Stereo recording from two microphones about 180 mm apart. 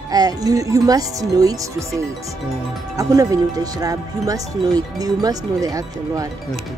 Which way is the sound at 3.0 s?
20° right (ahead or behind).